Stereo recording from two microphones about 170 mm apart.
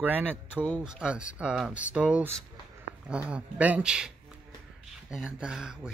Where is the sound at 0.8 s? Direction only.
5° right (ahead or behind).